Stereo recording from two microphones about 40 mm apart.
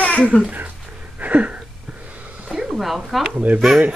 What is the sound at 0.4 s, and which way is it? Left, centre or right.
Speech, right.